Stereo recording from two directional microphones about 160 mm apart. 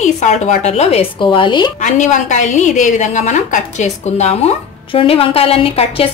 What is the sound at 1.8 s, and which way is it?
A woman's voice, 50° left (ahead or behind).